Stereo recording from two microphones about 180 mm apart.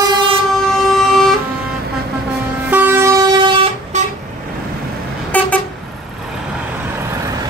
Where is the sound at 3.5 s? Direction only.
30° right (ahead or behind).